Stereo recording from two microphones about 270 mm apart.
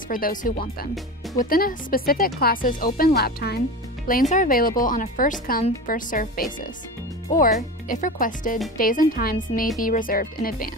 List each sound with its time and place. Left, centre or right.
0.1 s speech: left